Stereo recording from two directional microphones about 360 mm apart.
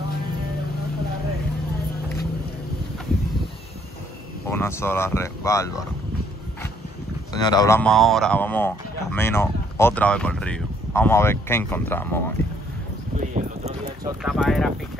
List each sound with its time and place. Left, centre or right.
4.5 s speech: centre
7.3 s speech: centre
13.3 s boat: centre
14.2 s speech: centre